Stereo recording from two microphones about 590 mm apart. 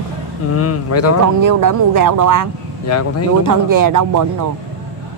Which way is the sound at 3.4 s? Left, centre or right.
Right.